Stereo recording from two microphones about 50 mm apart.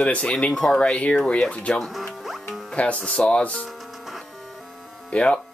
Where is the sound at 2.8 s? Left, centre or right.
Left.